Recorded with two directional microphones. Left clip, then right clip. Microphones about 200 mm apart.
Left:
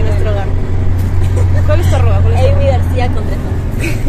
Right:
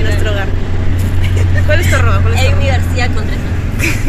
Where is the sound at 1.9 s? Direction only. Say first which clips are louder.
Right 2 dB; 15° right (ahead or behind).